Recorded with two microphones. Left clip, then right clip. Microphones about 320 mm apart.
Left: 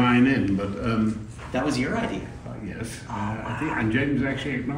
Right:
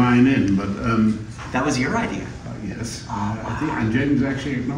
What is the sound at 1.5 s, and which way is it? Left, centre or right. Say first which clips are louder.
Speech: right 4 dB; centre.